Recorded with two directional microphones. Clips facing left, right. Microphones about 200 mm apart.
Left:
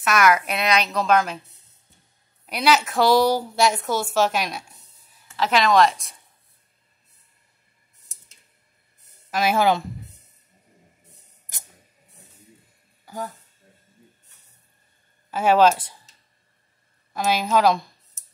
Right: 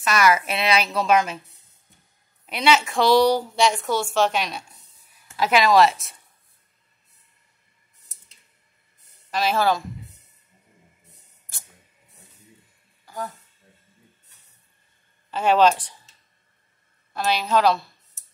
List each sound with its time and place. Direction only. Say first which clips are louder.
0.0 s a woman's voice: left 1 dB; centre (ahead or behind)
2.4 s a woman's voice: even; centre (ahead or behind)
5.3 s a woman's voice: right 1 dB; 10° right (ahead or behind)
9.5 s speech: left 2 dB; 15° left (ahead or behind)
13.0 s a sound: even; 15° left (ahead or behind)
15.3 s speech: left 1 dB; 10° left (ahead or behind)
17.5 s speech: even; 10° left (ahead or behind)